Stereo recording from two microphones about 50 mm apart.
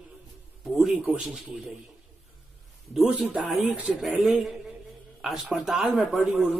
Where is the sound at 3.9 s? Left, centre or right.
Centre.